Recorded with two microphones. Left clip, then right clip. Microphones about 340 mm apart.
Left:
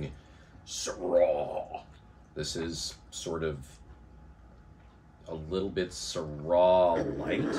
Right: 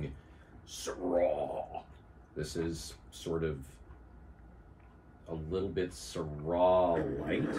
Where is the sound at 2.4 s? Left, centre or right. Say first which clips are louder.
Left 2 dB; left.